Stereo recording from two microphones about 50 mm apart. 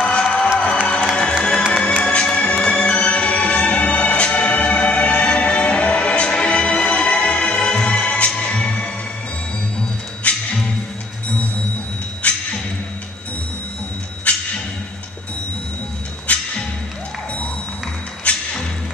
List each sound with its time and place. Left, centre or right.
0.6 s music: left
10.3 s music: left
12.2 s a sound: left
14.3 s music: left
16.3 s music: left
18.3 s music: left